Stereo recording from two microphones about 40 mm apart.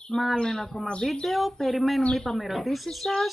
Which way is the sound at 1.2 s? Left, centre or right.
Centre.